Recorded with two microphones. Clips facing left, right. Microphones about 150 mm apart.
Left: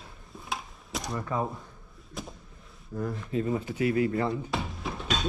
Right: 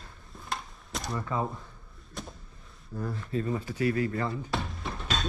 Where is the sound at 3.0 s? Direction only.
20° left (ahead or behind).